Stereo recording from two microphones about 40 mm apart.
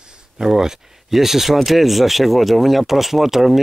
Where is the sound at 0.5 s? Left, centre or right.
Centre.